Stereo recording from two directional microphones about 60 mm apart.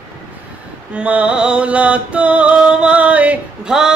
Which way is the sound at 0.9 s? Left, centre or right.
Right.